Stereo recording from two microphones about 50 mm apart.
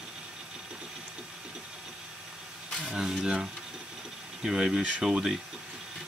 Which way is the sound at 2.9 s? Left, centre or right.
Centre.